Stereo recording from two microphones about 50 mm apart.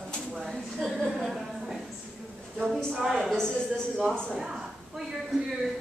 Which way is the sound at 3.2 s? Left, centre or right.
Centre.